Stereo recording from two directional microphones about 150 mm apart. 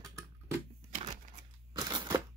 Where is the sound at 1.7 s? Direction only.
25° right (ahead or behind).